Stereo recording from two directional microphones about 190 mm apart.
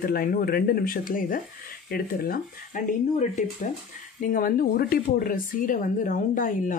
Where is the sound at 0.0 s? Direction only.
50° left (ahead or behind).